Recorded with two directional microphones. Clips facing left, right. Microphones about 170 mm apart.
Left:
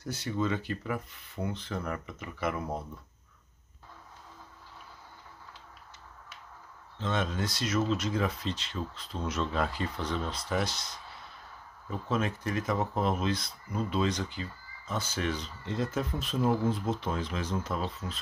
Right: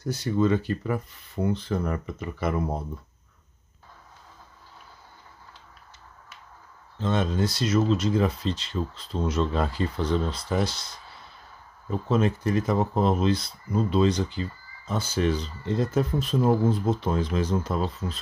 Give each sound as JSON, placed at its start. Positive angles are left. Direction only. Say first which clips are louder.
{"t": 0.1, "sound": "speech", "louder": "right 8 dB", "side_deg": -40}
{"t": 7.0, "sound": "speech", "louder": "right 6 dB", "side_deg": -35}
{"t": 11.9, "sound": "speech", "louder": "right 7 dB", "side_deg": -30}